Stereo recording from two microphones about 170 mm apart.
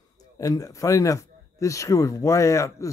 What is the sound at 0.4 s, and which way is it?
Speech, 20° left (ahead or behind).